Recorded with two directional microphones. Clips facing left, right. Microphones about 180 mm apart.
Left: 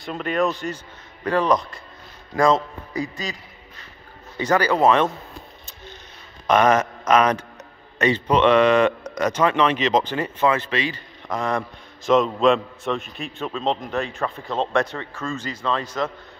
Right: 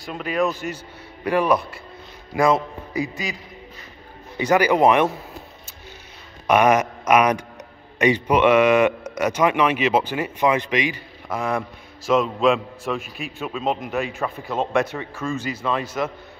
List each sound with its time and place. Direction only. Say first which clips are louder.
0.0 s a man's voice: even; 5° right (ahead or behind)
4.4 s a man's voice: right 2 dB; 10° right (ahead or behind)
6.4 s a man's voice: right 1 dB; 10° right (ahead or behind)